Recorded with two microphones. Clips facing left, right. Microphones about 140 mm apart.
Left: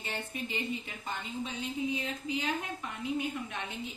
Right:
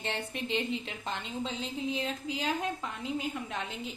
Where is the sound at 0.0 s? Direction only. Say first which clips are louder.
Right 3 dB; 80° right.